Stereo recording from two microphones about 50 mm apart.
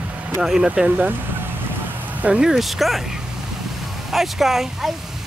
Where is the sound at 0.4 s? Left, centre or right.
Centre.